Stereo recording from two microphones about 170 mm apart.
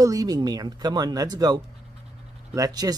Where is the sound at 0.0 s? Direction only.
20° right (ahead or behind).